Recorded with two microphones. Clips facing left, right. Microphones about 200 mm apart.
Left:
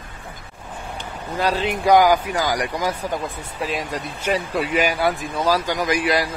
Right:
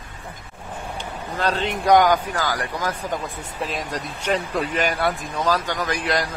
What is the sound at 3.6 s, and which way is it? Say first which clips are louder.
Speech: left 2 dB; centre (ahead or behind).